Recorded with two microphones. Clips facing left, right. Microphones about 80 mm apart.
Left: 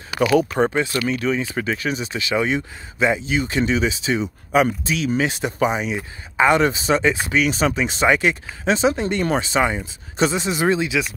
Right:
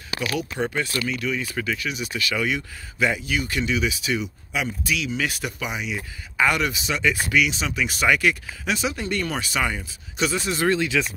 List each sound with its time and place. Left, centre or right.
0.2 s speech: left
4.5 s speech: left
4.8 s speech: left
5.9 s speech: left
7.4 s speech: left
7.8 s speech: left